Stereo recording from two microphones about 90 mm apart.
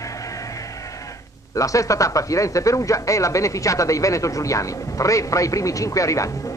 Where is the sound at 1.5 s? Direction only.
40° left (ahead or behind).